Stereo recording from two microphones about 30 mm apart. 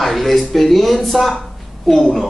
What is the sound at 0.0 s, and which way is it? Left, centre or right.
A man's voice, centre.